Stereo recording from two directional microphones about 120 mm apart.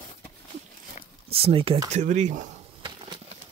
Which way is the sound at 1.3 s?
50° right (ahead or behind).